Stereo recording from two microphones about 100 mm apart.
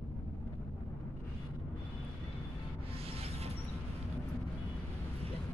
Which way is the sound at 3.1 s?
90° right.